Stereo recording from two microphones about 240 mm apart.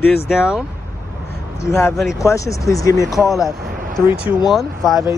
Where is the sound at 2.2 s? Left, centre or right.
Centre.